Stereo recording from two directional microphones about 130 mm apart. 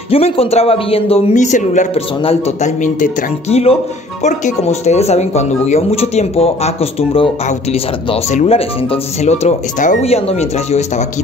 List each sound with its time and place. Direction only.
0.1 s a man's voice: 50° left (ahead or behind); by 1.9 s 70° left (ahead or behind)
2.0 s speech: 50° left (ahead or behind); by 3.5 s 80° left
4.2 s speech: 65° left (ahead or behind)
10.0 s speech: 50° left (ahead or behind)